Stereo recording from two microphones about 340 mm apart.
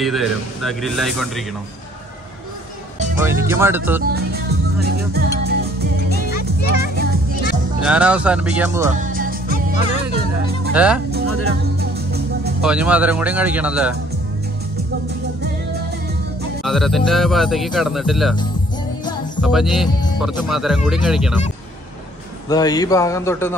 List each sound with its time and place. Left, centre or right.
0.0 s speech: centre
3.2 s speech: centre
4.1 s music: right
6.3 s music: left
7.8 s speech: centre
8.9 s music: right
10.7 s speech: centre
11.2 s speech: right
12.6 s speech: centre
16.6 s speech: centre
19.4 s speech: centre
22.5 s a man's voice: centre